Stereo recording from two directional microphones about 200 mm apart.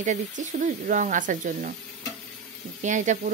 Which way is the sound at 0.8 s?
40° right (ahead or behind).